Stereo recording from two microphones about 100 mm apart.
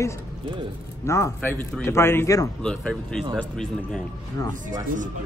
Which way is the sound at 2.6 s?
5° left (ahead or behind).